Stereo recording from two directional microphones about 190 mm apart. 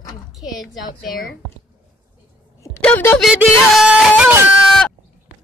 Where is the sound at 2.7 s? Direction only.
10° left (ahead or behind).